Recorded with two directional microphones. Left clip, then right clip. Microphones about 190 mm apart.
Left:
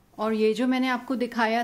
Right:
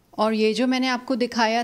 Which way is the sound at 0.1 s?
35° right (ahead or behind).